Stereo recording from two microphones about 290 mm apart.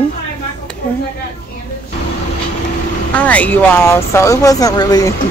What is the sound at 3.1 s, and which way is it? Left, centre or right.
Speech, centre.